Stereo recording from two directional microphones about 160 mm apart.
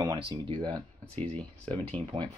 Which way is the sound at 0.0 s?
30° right (ahead or behind).